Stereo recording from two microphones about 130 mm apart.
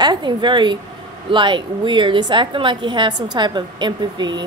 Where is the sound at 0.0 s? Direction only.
35° right (ahead or behind).